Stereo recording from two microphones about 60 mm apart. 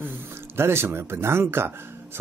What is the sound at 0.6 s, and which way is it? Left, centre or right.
Speech, right.